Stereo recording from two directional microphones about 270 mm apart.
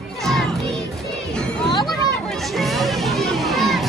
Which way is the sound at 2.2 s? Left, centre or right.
Centre.